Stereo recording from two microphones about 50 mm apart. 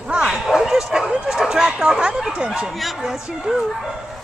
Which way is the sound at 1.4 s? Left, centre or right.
Centre.